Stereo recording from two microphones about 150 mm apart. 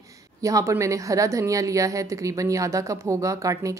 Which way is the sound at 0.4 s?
20° right (ahead or behind).